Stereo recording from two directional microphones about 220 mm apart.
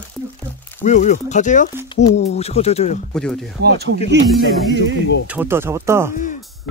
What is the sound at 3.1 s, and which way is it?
Speech, centre (ahead or behind).